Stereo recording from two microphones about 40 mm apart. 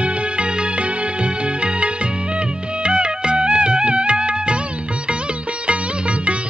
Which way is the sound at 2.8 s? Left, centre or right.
Right.